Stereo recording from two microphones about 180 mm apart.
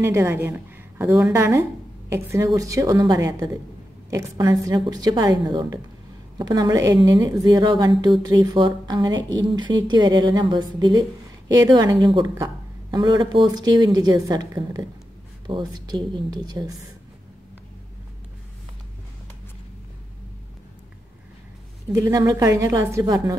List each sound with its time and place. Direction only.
0.0 s a woman's voice: 15° right (ahead or behind)
21.9 s a woman's voice: 20° right (ahead or behind)